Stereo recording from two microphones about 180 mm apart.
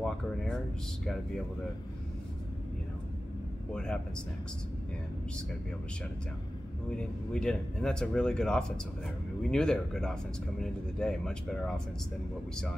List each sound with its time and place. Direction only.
0.0 s speech: 5° left (ahead or behind)
3.7 s speech: 5° left (ahead or behind)
7.0 s speech: 5° left (ahead or behind)